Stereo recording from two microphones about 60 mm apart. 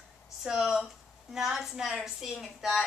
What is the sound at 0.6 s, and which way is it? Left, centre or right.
A woman's voice, centre.